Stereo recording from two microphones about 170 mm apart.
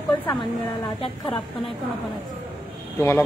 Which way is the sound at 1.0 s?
30° left (ahead or behind).